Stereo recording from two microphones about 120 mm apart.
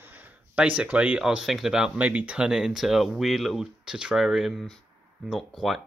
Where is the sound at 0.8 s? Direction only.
10° right (ahead or behind).